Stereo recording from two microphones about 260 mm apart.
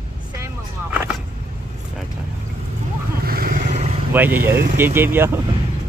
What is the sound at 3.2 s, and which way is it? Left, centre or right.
Vehicle, right.